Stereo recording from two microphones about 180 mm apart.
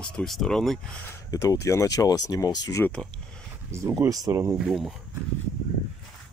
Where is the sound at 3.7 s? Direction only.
15° right (ahead or behind).